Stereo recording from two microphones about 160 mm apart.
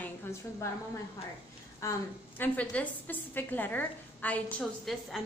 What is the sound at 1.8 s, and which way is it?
A woman's voice, 20° left (ahead or behind).